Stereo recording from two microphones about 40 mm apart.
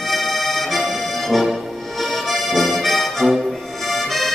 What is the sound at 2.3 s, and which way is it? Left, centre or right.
Accordion, centre.